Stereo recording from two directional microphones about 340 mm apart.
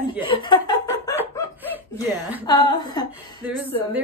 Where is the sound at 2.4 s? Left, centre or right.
Centre.